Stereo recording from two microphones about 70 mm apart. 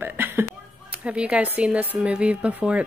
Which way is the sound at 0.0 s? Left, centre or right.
Right.